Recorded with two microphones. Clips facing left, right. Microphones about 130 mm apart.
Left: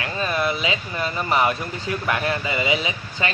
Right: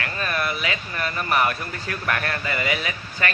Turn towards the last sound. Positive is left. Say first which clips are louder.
# left 2 dB
turn(degrees=20)  # may be behind; listen again after turning